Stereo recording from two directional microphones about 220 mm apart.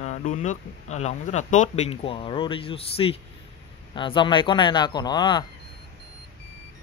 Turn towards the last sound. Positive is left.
turn(degrees=20)  # may be behind; listen again after turning